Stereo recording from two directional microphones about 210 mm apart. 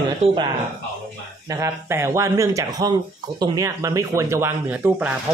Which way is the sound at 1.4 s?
15° right (ahead or behind).